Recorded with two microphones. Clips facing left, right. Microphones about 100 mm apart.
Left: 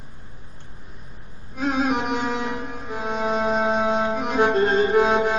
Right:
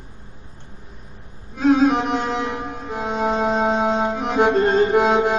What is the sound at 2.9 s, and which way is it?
Music, 25° right (ahead or behind).